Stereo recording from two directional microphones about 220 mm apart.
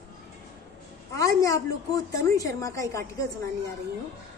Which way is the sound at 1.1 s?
15° left (ahead or behind).